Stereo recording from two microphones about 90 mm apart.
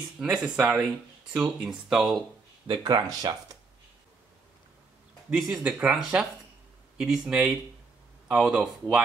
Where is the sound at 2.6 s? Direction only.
55° right (ahead or behind).